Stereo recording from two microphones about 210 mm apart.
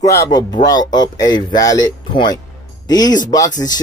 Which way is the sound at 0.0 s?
15° left (ahead or behind).